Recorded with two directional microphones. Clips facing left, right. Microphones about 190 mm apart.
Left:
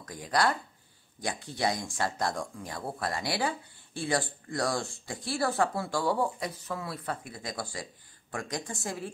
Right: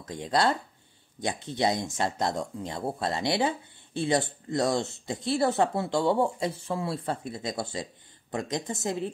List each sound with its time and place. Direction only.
0.0 s speech: 25° right (ahead or behind)